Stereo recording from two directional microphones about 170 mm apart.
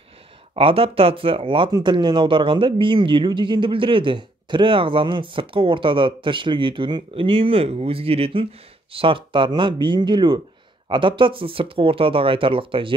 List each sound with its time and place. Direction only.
0.6 s speech: 35° right (ahead or behind)